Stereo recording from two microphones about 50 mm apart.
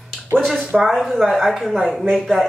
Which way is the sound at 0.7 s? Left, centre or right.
Centre.